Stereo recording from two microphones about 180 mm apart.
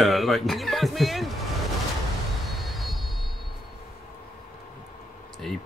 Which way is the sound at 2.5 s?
Centre (ahead or behind).